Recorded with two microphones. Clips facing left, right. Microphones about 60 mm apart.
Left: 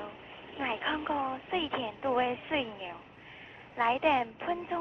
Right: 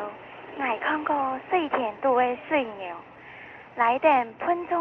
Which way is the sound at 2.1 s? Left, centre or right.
Right.